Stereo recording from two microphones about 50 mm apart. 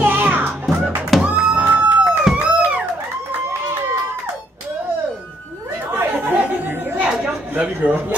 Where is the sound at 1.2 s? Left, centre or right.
Right.